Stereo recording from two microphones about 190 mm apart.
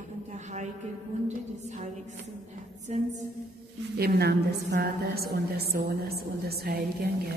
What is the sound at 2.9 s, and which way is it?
Speech, 35° right (ahead or behind).